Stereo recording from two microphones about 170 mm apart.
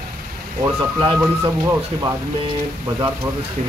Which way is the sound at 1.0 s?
20° right (ahead or behind).